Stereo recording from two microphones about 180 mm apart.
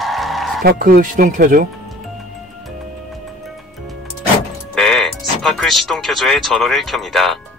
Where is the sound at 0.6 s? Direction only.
55° right (ahead or behind).